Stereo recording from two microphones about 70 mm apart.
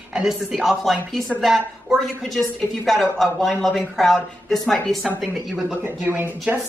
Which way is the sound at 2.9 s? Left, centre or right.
Centre.